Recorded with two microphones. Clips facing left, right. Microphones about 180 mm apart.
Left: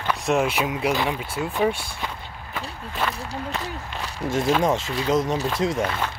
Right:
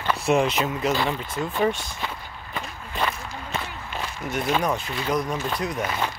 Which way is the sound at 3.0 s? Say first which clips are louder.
Even; 5° left (ahead or behind).